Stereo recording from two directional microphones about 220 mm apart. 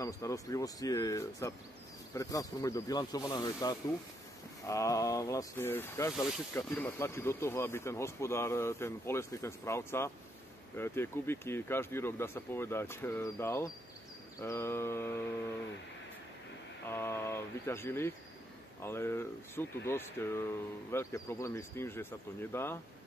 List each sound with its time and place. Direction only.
0.0 s speech: 15° left (ahead or behind)
16.9 s speech: 10° left (ahead or behind)